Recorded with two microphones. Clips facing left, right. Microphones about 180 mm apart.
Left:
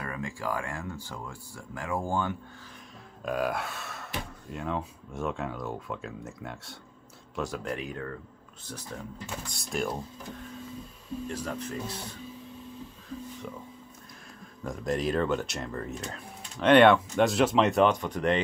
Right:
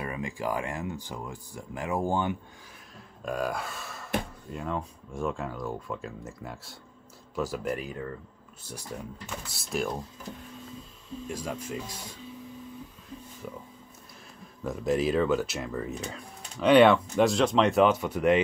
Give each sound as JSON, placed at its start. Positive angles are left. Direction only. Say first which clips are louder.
{"t": 0.0, "sound": "speech", "louder": "right 2 dB", "side_deg": -20}
{"t": 3.3, "sound": "speech", "louder": "left 1 dB", "side_deg": 0}
{"t": 11.2, "sound": "speech", "louder": "right 1 dB", "side_deg": -10}
{"t": 14.6, "sound": "speech", "louder": "right 3 dB", "side_deg": -5}